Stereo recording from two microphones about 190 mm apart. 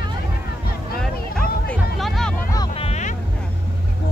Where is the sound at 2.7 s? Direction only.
35° left (ahead or behind).